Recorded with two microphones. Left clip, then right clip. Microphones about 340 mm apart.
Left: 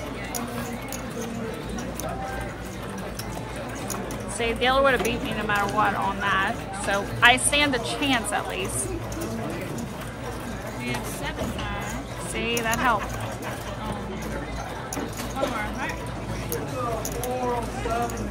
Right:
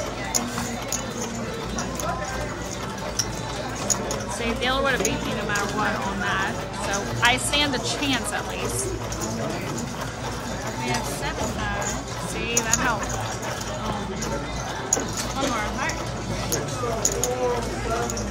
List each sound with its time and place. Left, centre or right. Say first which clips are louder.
4.4 s speech: left 4 dB; left
12.4 s speech: even; left